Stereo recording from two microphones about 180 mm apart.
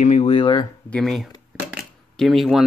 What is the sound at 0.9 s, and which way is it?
Speech, 5° left (ahead or behind).